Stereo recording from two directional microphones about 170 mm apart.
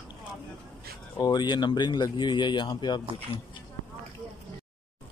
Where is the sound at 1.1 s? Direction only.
25° left (ahead or behind).